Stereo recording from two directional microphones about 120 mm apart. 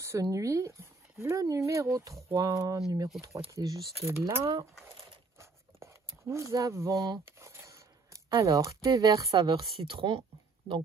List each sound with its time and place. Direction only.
0.0 s speech: 25° right (ahead or behind)
5.4 s a sound: 25° right (ahead or behind)
8.4 s speech: 25° right (ahead or behind)
9.4 s speech: 45° right (ahead or behind)